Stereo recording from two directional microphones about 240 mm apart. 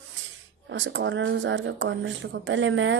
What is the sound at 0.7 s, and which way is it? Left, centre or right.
Speech, right.